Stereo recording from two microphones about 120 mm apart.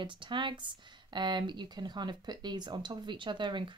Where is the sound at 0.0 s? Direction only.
45° right (ahead or behind).